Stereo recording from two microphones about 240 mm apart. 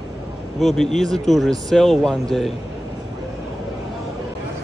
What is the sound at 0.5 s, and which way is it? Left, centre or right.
Speech, centre.